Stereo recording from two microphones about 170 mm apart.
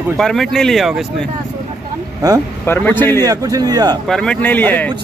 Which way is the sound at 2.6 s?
10° left (ahead or behind).